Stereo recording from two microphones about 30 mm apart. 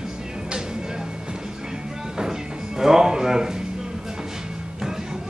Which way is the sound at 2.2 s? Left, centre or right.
Centre.